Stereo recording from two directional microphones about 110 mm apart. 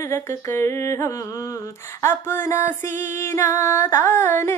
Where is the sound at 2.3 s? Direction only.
25° left (ahead or behind).